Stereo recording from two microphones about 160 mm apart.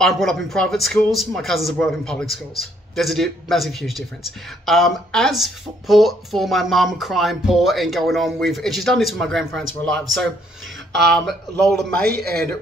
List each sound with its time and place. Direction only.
0.0 s speech: centre (ahead or behind)